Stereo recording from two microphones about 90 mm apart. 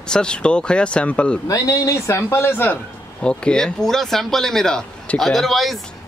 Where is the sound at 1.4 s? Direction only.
40° left (ahead or behind); by 2.7 s 25° left (ahead or behind).